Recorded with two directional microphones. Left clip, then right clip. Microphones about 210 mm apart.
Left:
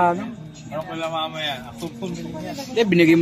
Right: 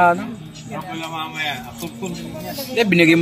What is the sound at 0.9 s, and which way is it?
Speech, 50° left (ahead or behind).